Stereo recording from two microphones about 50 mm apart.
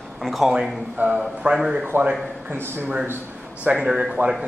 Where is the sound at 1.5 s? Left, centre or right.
Centre.